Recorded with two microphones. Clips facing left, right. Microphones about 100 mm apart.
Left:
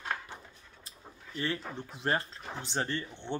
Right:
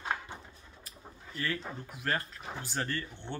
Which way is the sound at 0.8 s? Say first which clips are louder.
Right 1 dB; 25° left (ahead or behind).